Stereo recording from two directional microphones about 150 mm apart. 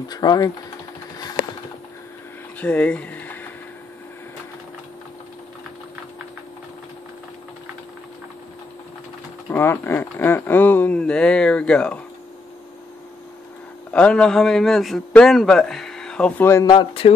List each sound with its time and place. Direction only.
0.1 s speech: 25° left (ahead or behind)
1.1 s sewing machine: 25° left (ahead or behind)
2.6 s speech: 10° left (ahead or behind)
9.5 s speech: 15° left (ahead or behind)
13.9 s a man's voice: 5° left (ahead or behind)
16.7 s speech: 35° left (ahead or behind)